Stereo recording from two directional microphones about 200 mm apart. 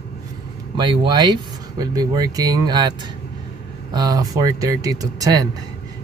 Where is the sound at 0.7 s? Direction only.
25° right (ahead or behind).